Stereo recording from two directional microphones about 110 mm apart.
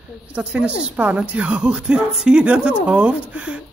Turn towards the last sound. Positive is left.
turn(degrees=-10)  # may be behind; listen again after turning